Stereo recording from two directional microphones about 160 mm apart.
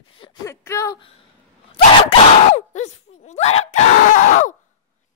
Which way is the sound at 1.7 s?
40° left (ahead or behind).